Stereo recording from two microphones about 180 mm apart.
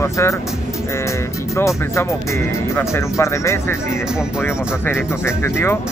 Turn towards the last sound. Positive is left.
turn(degrees=15)  # may be behind; listen again after turning